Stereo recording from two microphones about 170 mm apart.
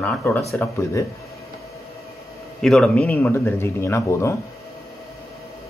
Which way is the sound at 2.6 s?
5° left (ahead or behind).